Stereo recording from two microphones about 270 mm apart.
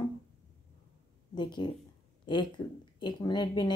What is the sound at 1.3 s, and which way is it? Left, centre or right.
A woman's voice, centre.